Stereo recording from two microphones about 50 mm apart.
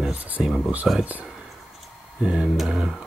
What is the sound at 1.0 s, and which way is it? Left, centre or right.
Speech, right.